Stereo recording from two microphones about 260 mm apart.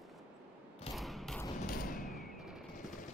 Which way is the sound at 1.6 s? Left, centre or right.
Left.